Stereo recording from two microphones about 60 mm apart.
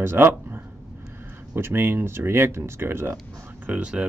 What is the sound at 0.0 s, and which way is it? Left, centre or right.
Speech, right.